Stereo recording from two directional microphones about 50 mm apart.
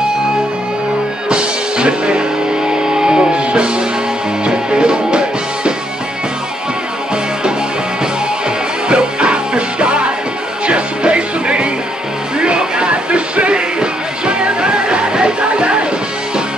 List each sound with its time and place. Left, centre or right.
1.3 s music: centre
8.8 s music: centre